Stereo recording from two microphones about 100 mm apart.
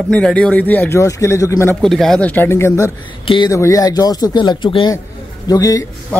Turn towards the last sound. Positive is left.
turn(degrees=35)  # may be behind; listen again after turning